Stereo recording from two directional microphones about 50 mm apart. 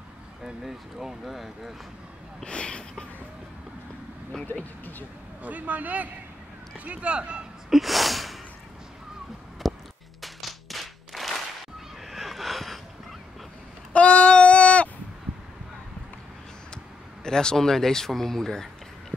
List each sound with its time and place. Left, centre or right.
0.7 s speech: centre
2.4 s speech: centre
5.4 s speech: right
7.7 s gasp: centre
9.6 s a sound: centre
10.2 s clapping: centre
12.1 s cat: centre
13.9 s a sound: left
16.7 s a sound: centre